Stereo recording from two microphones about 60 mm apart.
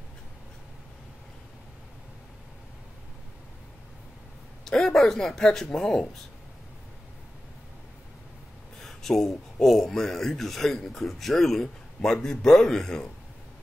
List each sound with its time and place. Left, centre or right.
4.6 s a woman's voice: centre
8.8 s speech: centre